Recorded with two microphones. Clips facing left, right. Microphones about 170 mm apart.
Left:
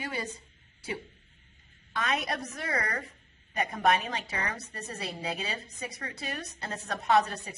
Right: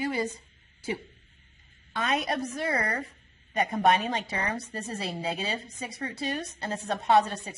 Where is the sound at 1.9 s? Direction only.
30° right (ahead or behind).